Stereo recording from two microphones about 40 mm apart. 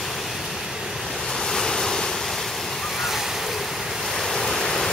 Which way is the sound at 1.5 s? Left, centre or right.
Centre.